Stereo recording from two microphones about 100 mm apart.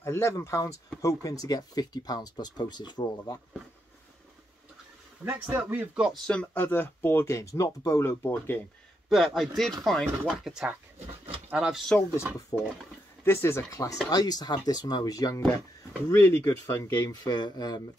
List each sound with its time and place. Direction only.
0.0 s speech: 30° left (ahead or behind); by 3.3 s 50° left (ahead or behind)
5.2 s a man's voice: 15° right (ahead or behind)
6.2 s speech: 10° left (ahead or behind)
9.1 s speech: centre (ahead or behind)
11.2 s a sound: 90° right
11.5 s a man's voice: 10° right (ahead or behind)
12.5 s speech: 35° left (ahead or behind)
13.2 s speech: 25° left (ahead or behind)
14.1 s speech: 40° left (ahead or behind)
16.1 s speech: 25° left (ahead or behind)
17.1 s speech: 45° left (ahead or behind)